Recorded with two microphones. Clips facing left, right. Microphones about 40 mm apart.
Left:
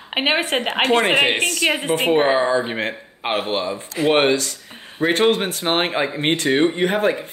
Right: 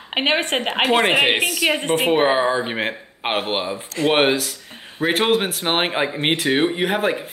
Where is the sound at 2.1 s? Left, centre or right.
Centre.